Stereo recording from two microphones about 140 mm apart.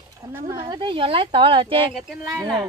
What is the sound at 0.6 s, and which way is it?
A woman's voice, 35° right (ahead or behind).